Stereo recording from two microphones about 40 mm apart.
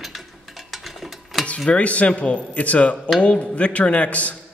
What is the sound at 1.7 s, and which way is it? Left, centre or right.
A man's voice, left.